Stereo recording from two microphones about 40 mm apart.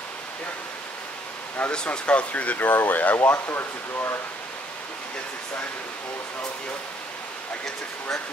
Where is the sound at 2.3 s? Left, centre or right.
Left.